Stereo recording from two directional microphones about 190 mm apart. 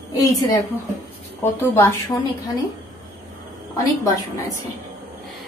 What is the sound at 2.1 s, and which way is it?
Speech, 20° left (ahead or behind).